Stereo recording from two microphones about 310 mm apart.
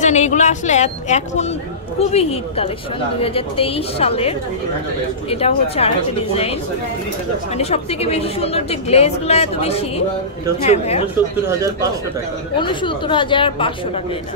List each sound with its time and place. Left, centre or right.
0.0 s a woman's voice: left
7.5 s a woman's voice: centre
12.5 s a woman's voice: centre